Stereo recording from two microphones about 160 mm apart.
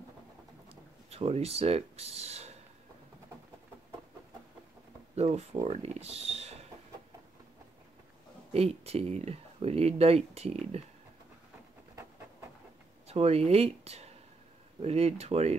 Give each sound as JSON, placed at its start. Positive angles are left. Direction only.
{"t": 1.1, "sound": "speech", "side_deg": -40}
{"t": 5.1, "sound": "speech", "side_deg": -40}
{"t": 8.5, "sound": "speech", "side_deg": -40}
{"t": 11.9, "sound": "a sound", "side_deg": -15}
{"t": 13.1, "sound": "speech", "side_deg": -40}